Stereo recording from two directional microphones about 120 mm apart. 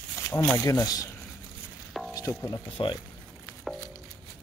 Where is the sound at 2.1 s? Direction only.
30° left (ahead or behind).